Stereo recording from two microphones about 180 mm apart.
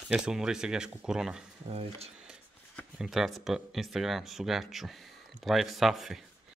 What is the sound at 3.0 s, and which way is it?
Speech, centre (ahead or behind).